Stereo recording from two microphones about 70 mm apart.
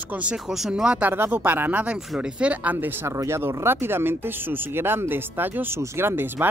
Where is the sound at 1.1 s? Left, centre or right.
Right.